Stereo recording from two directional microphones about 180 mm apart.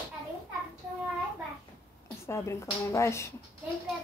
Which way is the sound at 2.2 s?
15° left (ahead or behind).